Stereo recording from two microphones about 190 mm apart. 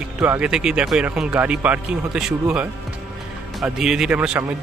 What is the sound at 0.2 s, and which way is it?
A man's voice, 5° right (ahead or behind).